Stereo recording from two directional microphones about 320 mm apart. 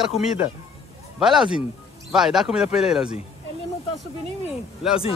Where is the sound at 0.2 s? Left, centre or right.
Centre.